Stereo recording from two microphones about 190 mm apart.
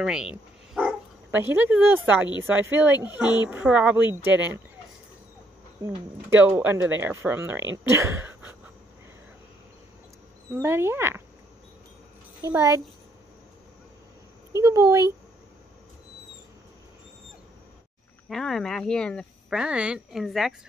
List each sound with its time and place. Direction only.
0.0 s speech: 5° right (ahead or behind)
5.9 s speech: 15° right (ahead or behind)
10.5 s speech: 15° right (ahead or behind)
12.4 s speech: 15° right (ahead or behind)
14.6 s speech: 15° right (ahead or behind)
18.3 s speech: centre (ahead or behind)